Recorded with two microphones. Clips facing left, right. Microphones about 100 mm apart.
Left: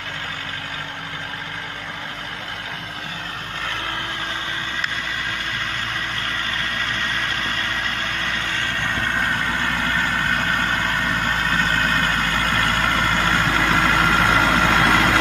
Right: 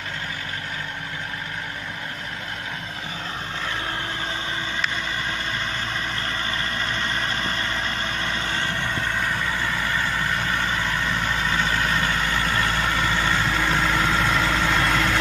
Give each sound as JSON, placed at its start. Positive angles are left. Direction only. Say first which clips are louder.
{"t": 9.0, "sound": "vehicle", "louder": "left 3 dB", "side_deg": 55}